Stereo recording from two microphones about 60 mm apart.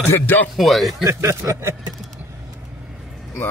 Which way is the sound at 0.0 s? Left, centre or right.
Left.